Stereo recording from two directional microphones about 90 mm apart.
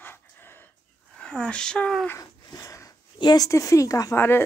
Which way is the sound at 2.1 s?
40° left (ahead or behind).